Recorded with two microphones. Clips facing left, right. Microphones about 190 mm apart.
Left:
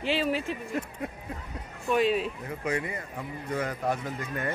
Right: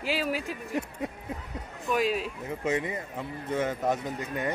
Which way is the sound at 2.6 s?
20° right (ahead or behind).